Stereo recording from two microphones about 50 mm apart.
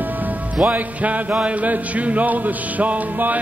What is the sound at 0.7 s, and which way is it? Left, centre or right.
A man's voice, right.